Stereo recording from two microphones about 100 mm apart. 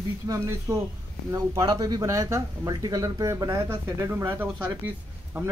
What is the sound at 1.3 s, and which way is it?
Speech, 40° right (ahead or behind).